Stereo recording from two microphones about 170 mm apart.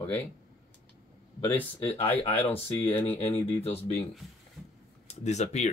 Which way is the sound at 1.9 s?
35° left (ahead or behind).